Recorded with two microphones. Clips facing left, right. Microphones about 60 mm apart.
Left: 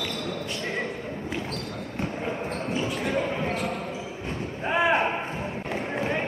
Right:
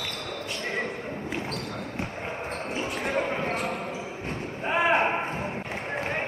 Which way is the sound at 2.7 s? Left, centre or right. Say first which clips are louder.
Left 2 dB; right.